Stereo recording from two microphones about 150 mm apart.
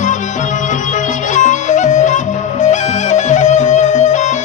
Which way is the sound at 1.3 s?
55° left (ahead or behind).